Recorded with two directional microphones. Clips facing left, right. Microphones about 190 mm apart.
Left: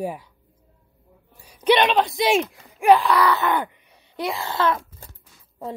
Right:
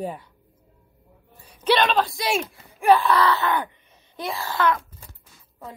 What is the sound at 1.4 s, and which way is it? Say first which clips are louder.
A woman's voice: left 3 dB; 15° left (ahead or behind).